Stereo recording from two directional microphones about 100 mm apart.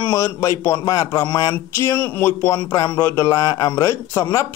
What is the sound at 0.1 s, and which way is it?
A man's voice, 30° left (ahead or behind).